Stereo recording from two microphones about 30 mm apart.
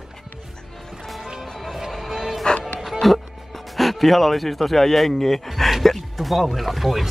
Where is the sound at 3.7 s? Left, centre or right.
Centre.